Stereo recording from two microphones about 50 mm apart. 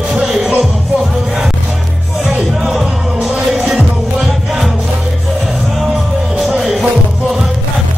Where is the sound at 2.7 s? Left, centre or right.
Centre.